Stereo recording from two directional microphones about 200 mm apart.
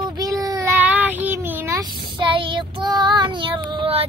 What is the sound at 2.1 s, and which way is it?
Child singing, 25° right (ahead or behind).